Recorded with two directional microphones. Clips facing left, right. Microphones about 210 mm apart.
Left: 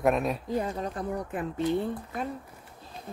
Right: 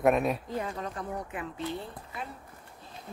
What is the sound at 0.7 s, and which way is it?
Speech, 35° left (ahead or behind).